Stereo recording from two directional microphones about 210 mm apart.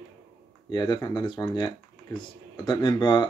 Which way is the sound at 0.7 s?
20° left (ahead or behind).